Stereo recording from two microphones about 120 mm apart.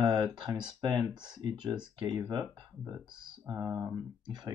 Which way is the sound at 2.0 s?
35° right (ahead or behind).